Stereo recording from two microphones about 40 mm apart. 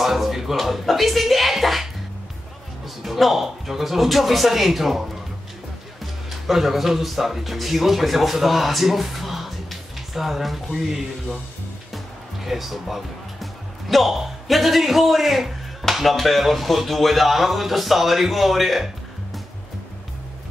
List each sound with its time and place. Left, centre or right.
0.0 s speech: centre
3.0 s speech: centre
6.4 s speech: centre
12.4 s speech: centre